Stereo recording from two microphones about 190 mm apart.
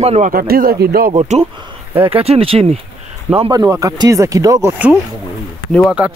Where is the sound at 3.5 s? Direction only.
20° right (ahead or behind).